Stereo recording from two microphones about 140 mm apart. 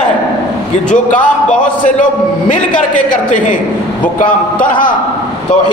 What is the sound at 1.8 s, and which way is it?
A man's voice, 65° left (ahead or behind).